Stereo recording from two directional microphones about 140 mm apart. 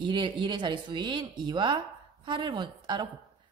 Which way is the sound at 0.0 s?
35° right (ahead or behind).